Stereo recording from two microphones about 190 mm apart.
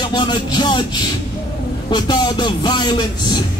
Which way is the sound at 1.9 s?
20° left (ahead or behind).